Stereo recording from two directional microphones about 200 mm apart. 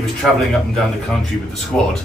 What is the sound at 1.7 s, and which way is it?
Speech, 5° left (ahead or behind).